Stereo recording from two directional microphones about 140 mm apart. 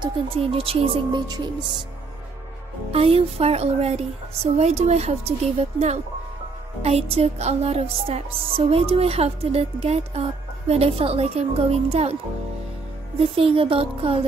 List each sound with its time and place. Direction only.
0.0 s speech: 40° right (ahead or behind)
2.9 s music: 40° right (ahead or behind)
6.8 s music: 45° right (ahead or behind)
13.2 s speech: 40° right (ahead or behind)